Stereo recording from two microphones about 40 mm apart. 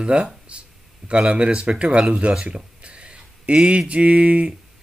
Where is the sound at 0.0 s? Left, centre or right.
Right.